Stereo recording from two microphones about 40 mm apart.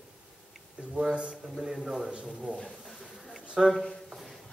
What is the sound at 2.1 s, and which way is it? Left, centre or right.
Speech, right.